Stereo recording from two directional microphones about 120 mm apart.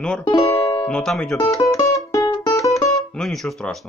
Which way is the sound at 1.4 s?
30° left (ahead or behind).